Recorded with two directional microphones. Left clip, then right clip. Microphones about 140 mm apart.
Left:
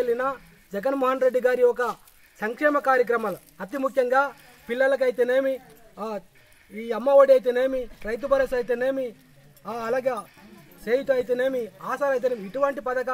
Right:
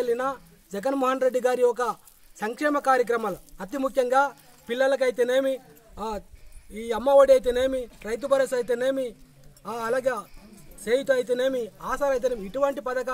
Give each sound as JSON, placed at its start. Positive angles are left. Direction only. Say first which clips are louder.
{"t": 0.0, "sound": "a man's voice", "louder": "left 1 dB", "side_deg": -30}